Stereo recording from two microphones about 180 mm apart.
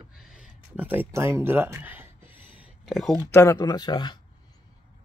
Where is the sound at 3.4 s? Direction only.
20° left (ahead or behind).